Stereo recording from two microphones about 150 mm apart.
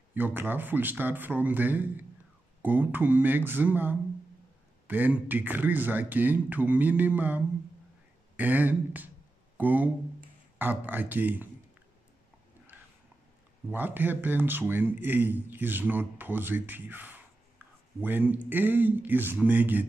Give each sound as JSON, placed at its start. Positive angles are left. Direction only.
{"t": 0.1, "sound": "a man's voice", "side_deg": -15}
{"t": 13.7, "sound": "a man's voice", "side_deg": -15}